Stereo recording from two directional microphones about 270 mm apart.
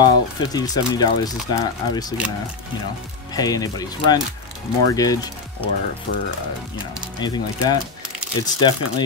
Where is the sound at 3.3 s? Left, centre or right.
Centre.